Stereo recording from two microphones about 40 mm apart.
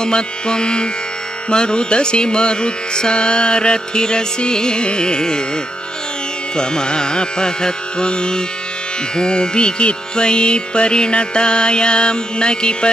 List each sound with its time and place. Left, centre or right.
0.0 s carnatic music: left
6.5 s carnatic music: centre